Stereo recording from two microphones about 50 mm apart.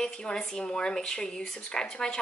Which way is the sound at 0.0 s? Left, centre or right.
Centre.